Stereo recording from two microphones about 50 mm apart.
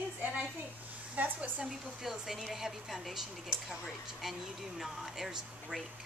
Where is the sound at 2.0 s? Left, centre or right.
Centre.